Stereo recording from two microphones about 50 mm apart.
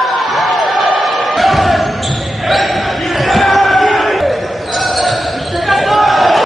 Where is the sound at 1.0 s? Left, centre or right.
Centre.